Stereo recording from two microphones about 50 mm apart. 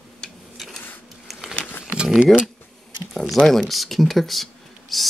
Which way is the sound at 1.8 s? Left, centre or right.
Centre.